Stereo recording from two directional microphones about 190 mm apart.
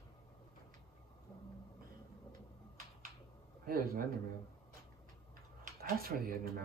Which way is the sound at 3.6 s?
50° right (ahead or behind).